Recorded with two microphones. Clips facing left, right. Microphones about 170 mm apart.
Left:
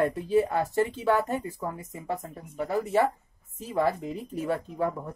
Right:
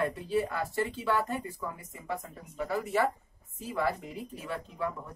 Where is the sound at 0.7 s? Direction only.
40° left (ahead or behind).